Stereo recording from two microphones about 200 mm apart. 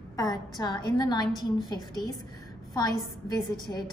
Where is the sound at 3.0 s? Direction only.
20° left (ahead or behind).